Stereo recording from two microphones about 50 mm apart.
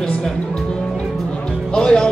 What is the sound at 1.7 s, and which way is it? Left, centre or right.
Speech, centre.